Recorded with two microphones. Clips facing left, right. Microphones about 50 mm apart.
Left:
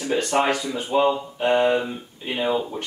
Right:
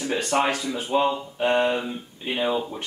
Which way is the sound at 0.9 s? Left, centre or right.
Centre.